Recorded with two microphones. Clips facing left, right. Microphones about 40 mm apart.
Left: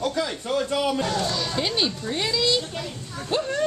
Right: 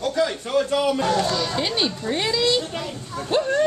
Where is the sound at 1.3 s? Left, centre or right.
Centre.